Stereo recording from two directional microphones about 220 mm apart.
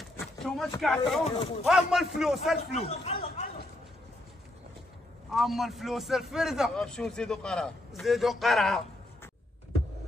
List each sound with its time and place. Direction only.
0.2 s a sound: centre (ahead or behind)
0.7 s a man's voice: centre (ahead or behind)
1.2 s speech: 25° left (ahead or behind)
1.7 s a man's voice: centre (ahead or behind)
2.9 s chatter: 25° left (ahead or behind)
5.3 s a man's voice: centre (ahead or behind)